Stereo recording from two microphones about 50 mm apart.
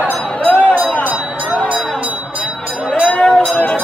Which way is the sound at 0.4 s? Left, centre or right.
Left.